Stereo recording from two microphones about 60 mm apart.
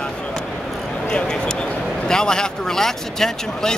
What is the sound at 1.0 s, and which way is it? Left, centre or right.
A man's voice, centre.